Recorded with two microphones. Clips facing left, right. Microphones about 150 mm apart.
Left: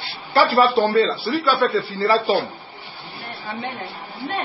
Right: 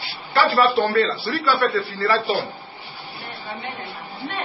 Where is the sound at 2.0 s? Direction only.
30° left (ahead or behind).